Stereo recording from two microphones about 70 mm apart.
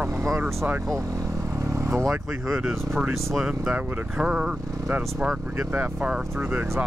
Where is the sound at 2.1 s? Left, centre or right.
Centre.